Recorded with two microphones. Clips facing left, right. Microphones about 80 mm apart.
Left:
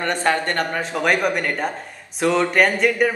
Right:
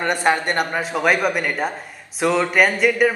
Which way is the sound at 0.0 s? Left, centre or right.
Centre.